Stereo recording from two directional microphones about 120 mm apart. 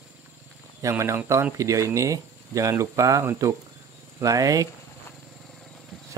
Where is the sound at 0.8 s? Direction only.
25° right (ahead or behind).